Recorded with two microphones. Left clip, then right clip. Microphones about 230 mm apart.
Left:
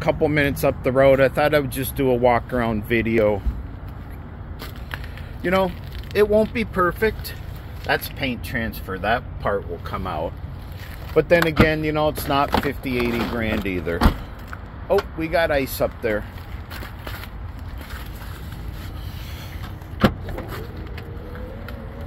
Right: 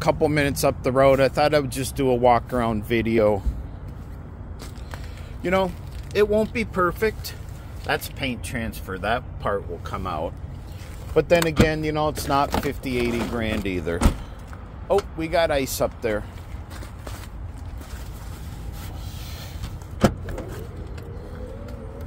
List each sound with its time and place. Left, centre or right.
0.0 s speech: centre
4.6 s a sound: centre
6.1 s speech: centre